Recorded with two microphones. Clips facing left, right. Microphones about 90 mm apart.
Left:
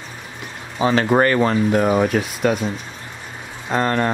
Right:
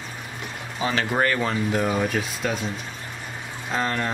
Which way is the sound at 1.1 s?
50° left (ahead or behind).